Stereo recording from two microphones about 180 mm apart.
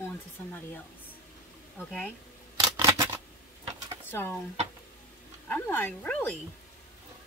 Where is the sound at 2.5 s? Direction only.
20° right (ahead or behind).